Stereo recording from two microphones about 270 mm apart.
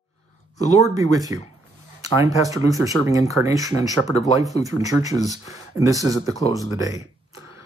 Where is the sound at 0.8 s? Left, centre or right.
Centre.